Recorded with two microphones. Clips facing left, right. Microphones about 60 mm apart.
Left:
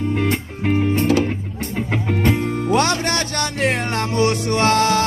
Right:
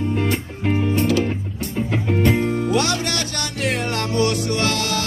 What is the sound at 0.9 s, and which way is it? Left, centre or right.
Music, left.